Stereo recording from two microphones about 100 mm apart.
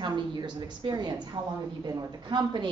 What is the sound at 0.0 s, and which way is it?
A woman's voice, 45° right (ahead or behind).